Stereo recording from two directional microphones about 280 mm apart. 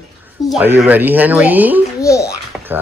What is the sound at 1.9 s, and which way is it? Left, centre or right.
Babbling, centre.